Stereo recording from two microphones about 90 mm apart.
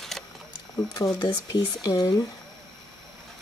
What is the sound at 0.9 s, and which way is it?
Speech, 50° left (ahead or behind).